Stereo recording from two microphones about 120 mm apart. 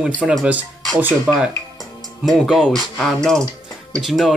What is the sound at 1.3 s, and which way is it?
Speech, 10° right (ahead or behind).